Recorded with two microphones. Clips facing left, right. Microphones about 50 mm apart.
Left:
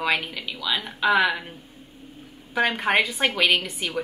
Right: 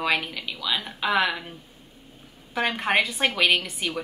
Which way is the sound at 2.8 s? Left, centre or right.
Centre.